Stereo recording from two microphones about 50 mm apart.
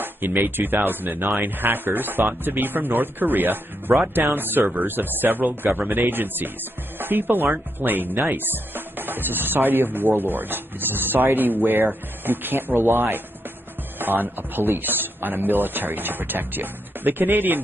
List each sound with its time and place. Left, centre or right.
0.0 s speech: right